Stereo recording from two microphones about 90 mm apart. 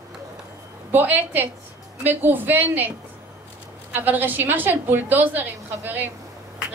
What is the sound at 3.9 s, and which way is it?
A woman's voice, 20° right (ahead or behind).